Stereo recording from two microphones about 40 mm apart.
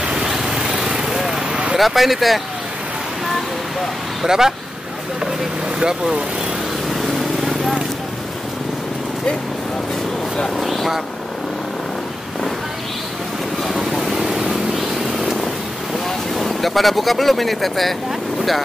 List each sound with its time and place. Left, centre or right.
0.0 s vehicle: centre
1.8 s speech: centre
3.3 s a sound: centre
4.3 s speech: centre
5.2 s vehicle: centre
6.9 s vehicle: centre
10.6 s vehicle: centre
13.9 s vehicle: centre
15.1 s purr: centre
16.3 s speech: centre